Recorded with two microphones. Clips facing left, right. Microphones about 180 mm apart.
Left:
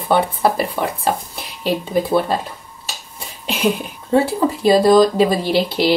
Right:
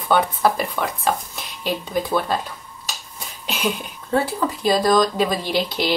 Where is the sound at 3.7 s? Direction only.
25° left (ahead or behind).